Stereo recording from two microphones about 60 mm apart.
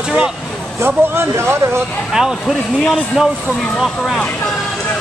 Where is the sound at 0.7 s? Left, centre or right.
Right.